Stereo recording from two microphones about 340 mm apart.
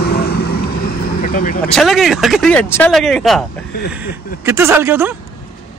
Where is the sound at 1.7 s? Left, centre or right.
Centre.